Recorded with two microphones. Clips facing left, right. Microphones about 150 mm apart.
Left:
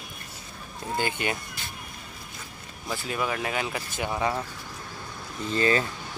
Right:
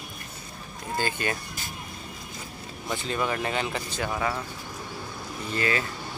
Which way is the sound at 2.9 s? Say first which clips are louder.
Right 1 dB; 5° left (ahead or behind).